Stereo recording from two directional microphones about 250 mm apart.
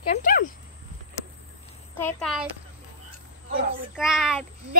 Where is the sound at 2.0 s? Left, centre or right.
Centre.